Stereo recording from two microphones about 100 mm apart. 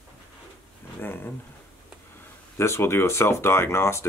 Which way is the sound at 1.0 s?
20° left (ahead or behind).